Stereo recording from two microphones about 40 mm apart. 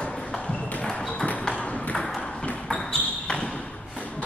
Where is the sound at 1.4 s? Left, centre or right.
Centre.